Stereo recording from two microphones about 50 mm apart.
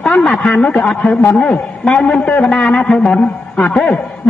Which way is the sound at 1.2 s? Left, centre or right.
Left.